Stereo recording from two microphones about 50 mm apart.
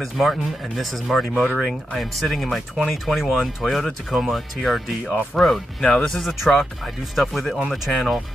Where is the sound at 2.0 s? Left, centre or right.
Centre.